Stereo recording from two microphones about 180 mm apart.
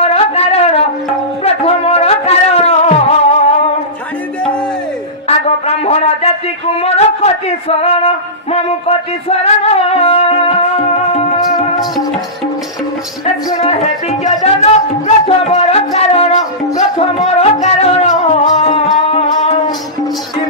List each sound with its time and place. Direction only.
0.0 s a sound: 35° left (ahead or behind)
1.4 s music: 35° left (ahead or behind)
5.7 s a man's voice: 35° left (ahead or behind)
13.2 s music: 35° left (ahead or behind)